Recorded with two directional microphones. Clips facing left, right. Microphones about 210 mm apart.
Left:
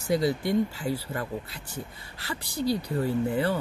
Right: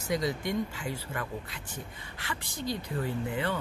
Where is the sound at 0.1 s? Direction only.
30° left (ahead or behind).